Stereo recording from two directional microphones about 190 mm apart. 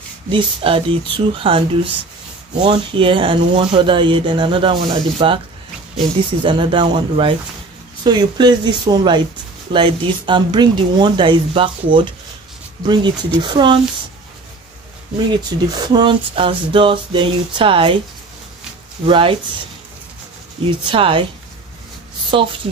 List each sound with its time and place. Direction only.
0.3 s speech: 30° right (ahead or behind)
6.4 s speech: 25° right (ahead or behind)
15.7 s speech: 20° right (ahead or behind)
19.0 s speech: 25° right (ahead or behind)
20.6 s speech: 25° right (ahead or behind)